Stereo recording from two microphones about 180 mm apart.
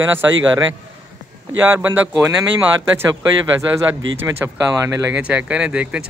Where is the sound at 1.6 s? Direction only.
10° right (ahead or behind).